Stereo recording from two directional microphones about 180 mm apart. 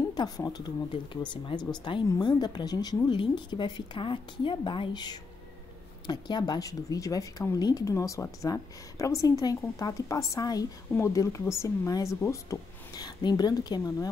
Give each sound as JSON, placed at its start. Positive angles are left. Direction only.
{"t": 0.1, "sound": "speech", "side_deg": 20}